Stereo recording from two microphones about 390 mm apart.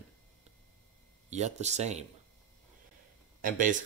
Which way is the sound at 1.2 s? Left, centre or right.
Centre.